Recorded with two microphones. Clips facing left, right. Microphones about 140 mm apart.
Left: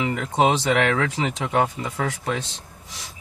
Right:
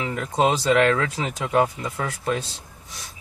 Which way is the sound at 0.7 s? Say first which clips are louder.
Right 2 dB; 70° left (ahead or behind).